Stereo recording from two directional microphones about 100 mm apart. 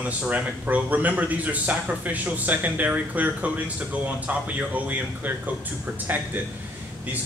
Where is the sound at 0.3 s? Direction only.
15° right (ahead or behind).